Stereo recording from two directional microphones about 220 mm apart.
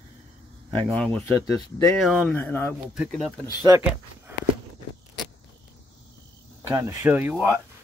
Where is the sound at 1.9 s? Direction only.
Centre (ahead or behind).